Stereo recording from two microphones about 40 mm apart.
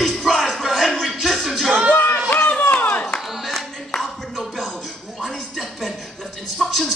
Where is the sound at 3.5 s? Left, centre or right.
Centre.